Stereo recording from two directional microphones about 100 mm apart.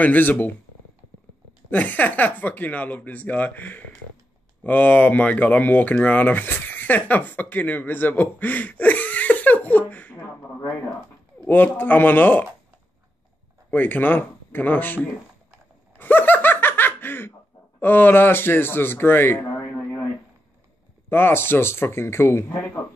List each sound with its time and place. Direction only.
0.0 s speech: 15° left (ahead or behind)
1.7 s speech: 15° left (ahead or behind)
11.4 s a man's voice: 20° left (ahead or behind)
13.7 s speech: 20° left (ahead or behind)
16.0 s laughter: 20° left (ahead or behind)
17.7 s a man's voice: 20° left (ahead or behind)
21.1 s a man's voice: 20° left (ahead or behind)